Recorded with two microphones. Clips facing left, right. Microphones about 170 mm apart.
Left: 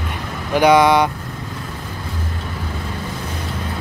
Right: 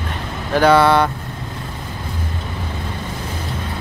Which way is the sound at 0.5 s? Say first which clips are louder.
Even; 15° left (ahead or behind).